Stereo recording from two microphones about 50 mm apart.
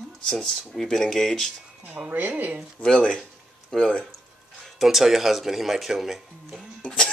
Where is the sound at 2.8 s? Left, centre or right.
Left.